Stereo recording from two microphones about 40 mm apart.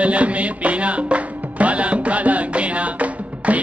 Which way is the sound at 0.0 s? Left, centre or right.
Right.